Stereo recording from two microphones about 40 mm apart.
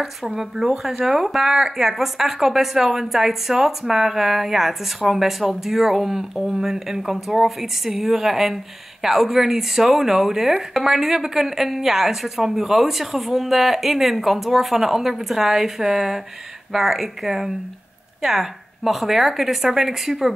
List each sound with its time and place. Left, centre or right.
0.0 s speech: centre